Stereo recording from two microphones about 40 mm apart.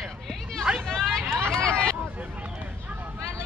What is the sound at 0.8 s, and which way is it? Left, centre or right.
Hubbub, centre.